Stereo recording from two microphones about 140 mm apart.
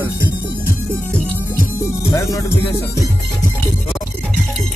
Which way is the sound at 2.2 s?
20° left (ahead or behind).